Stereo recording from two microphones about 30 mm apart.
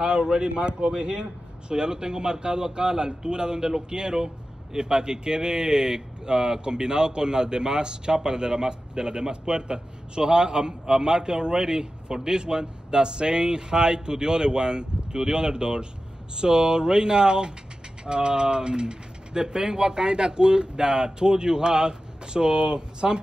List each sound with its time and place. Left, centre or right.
0.0 s a man's voice: right